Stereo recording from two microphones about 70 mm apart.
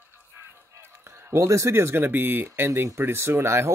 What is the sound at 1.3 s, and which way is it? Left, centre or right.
Speech, right.